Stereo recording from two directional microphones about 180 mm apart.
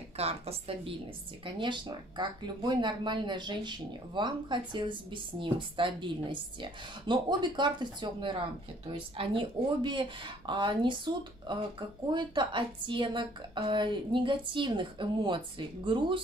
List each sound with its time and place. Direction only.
0.2 s a woman's voice: 35° right (ahead or behind)